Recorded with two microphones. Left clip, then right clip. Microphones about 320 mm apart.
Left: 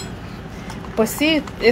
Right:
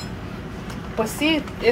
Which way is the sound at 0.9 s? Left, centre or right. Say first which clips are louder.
Left 4 dB; left.